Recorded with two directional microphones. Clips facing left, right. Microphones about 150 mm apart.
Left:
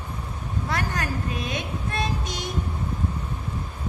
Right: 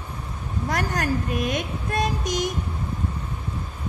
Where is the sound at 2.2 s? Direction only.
15° right (ahead or behind).